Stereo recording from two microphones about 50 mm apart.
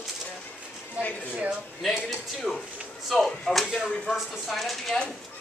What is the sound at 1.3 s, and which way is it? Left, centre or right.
Speech, right.